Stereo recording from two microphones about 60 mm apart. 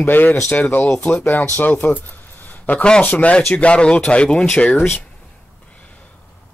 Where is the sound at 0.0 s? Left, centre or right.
Left; by 4.7 s centre.